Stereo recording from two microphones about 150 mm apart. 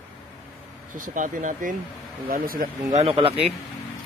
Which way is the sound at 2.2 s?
70° right (ahead or behind).